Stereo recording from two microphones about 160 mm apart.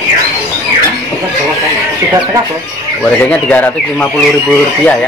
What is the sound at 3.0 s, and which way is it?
Speech, 5° left (ahead or behind).